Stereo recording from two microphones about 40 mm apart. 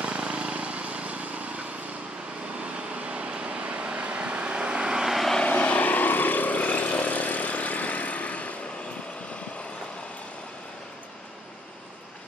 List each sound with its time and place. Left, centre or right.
0.0 s vehicle: right
5.4 s vehicle: left